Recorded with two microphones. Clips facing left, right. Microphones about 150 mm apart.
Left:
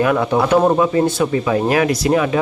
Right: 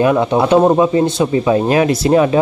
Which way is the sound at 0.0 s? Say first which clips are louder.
Right 3 dB; 25° right (ahead or behind).